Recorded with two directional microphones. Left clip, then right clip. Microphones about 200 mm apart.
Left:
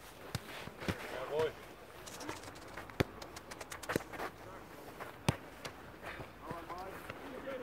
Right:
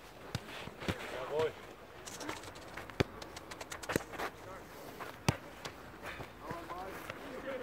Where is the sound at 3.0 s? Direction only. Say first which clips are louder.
Right 1 dB; 10° left (ahead or behind).